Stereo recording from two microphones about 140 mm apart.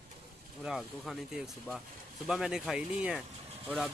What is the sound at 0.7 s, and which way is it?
Speech, centre (ahead or behind).